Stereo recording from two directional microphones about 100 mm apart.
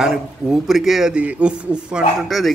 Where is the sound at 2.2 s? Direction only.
Centre (ahead or behind).